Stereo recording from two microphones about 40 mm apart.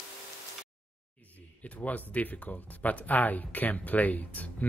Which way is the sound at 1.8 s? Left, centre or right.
Left.